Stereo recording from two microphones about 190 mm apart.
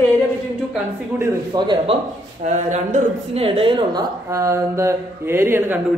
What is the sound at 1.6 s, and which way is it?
Speech, 25° right (ahead or behind).